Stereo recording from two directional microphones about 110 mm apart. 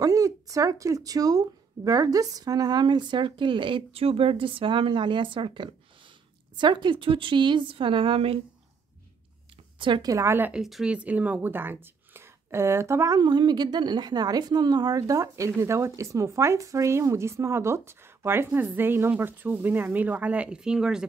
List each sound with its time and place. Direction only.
0.0 s speech: 30° right (ahead or behind); by 8.4 s 55° right (ahead or behind)
9.8 s speech: 50° right (ahead or behind)
10.0 s speech: 25° right (ahead or behind)
10.5 s speech: 5° right (ahead or behind)